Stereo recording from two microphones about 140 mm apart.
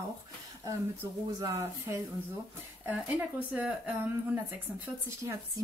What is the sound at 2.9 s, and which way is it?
Speech, 10° right (ahead or behind).